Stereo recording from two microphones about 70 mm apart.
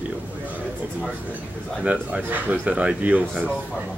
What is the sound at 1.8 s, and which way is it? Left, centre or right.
A man's voice, centre.